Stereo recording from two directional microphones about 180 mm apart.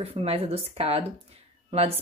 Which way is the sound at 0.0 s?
35° right (ahead or behind).